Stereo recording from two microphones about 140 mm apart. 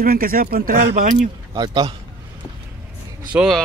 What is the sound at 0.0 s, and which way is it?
Speech, 90° right.